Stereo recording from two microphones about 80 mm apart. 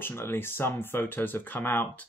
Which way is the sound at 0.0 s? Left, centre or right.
Left.